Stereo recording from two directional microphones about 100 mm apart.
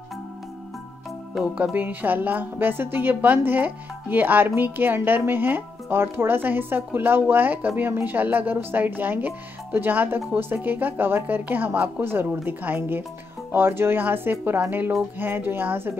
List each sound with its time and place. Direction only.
1.4 s a woman's voice: 15° right (ahead or behind)